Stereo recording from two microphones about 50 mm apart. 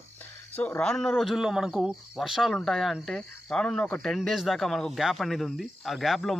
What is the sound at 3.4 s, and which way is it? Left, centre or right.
A man's voice, centre.